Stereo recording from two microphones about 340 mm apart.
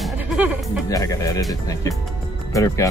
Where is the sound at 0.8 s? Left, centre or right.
Centre.